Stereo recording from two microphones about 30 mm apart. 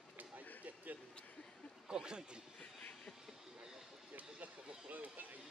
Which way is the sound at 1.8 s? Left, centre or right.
Right.